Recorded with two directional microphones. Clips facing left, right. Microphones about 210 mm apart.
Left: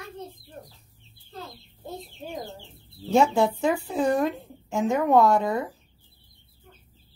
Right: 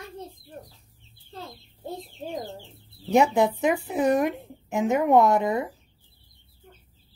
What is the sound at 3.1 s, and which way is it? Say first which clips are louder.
Speech: even; 20° right (ahead or behind).